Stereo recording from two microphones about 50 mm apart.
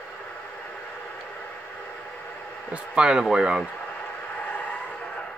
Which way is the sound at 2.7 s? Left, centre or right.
Centre.